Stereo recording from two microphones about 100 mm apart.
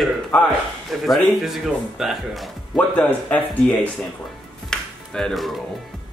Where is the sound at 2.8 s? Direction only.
15° left (ahead or behind).